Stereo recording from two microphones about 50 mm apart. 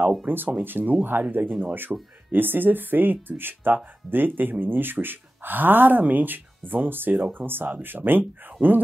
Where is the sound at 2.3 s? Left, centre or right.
Right.